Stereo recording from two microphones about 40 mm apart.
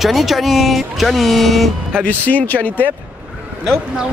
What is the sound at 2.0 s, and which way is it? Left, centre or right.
Speech, left.